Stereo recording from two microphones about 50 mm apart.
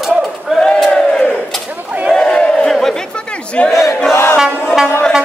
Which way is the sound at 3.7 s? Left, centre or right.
Left.